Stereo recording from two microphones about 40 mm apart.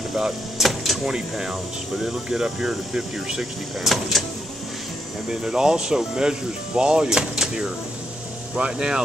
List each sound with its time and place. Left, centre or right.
0.1 s vehicle: centre
1.3 s speech: centre
3.8 s speech: centre
5.3 s speech: centre